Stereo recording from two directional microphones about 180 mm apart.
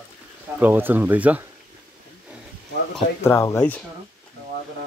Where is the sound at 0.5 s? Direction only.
10° right (ahead or behind).